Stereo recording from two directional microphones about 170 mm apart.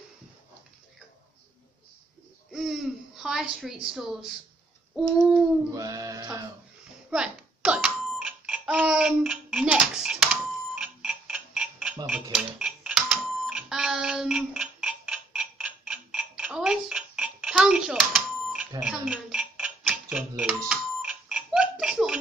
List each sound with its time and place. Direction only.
2.5 s speech: 5° right (ahead or behind)
4.9 s babbling: centre (ahead or behind)
5.8 s a sound: 20° right (ahead or behind)
7.1 s a sound: 5° right (ahead or behind)
12.1 s cash register: 5° right (ahead or behind)
18.8 s music: 5° right (ahead or behind)